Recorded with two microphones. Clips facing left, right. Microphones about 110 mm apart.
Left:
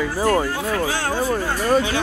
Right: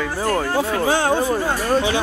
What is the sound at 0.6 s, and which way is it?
Speech, 25° right (ahead or behind).